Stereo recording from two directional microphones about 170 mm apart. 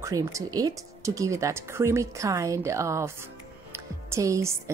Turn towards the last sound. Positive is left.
turn(degrees=-15)  # may be behind; listen again after turning